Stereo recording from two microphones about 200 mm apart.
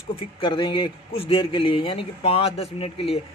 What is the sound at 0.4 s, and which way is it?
A man's voice, 25° left (ahead or behind).